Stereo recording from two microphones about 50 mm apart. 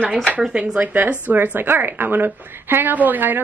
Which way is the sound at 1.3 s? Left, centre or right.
Right.